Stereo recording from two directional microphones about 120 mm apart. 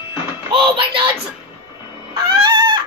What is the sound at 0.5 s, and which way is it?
Speech, 45° right (ahead or behind).